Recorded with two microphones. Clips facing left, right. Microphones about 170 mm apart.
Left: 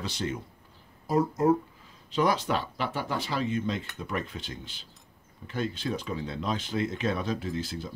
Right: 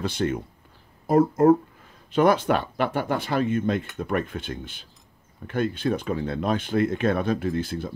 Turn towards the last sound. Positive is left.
turn(degrees=-55)  # may be behind; listen again after turning